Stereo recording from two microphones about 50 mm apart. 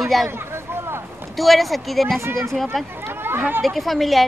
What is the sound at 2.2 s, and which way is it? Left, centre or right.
Speech, right.